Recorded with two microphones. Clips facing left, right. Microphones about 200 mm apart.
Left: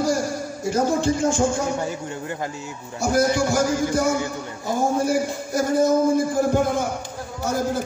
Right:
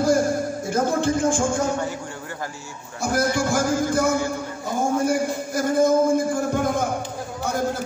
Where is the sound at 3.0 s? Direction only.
55° right (ahead or behind).